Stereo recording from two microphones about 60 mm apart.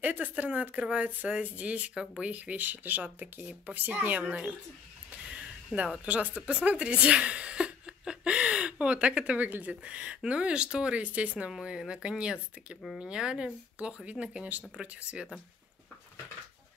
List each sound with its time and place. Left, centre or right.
0.0 s speech: right
5.8 s speech: centre